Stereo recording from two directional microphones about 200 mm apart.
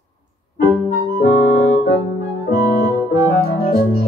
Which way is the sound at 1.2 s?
35° left (ahead or behind).